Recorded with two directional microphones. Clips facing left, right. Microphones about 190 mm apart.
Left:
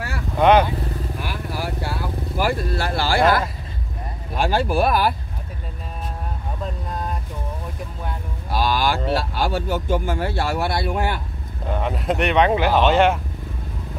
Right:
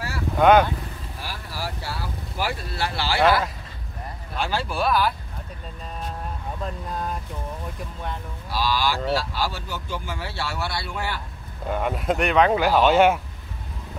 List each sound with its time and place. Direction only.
0.4 s vehicle: centre (ahead or behind)
1.2 s vehicle: 55° left (ahead or behind)
4.4 s speech: 50° left (ahead or behind)
8.5 s speech: 50° left (ahead or behind)
11.7 s speech: centre (ahead or behind)